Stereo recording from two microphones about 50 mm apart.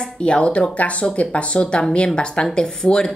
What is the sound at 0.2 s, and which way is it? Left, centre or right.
Speech, left.